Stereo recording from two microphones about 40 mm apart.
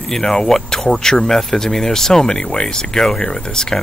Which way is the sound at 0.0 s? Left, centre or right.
Centre.